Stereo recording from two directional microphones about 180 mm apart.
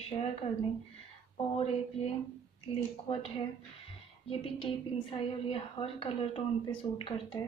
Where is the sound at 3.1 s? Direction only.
35° left (ahead or behind).